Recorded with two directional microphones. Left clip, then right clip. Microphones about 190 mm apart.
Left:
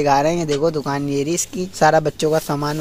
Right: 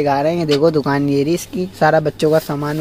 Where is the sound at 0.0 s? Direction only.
20° left (ahead or behind).